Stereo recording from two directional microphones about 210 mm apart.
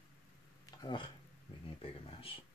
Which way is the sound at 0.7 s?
20° left (ahead or behind).